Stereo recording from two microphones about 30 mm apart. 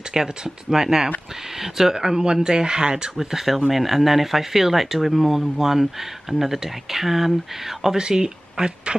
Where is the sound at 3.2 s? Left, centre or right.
Centre.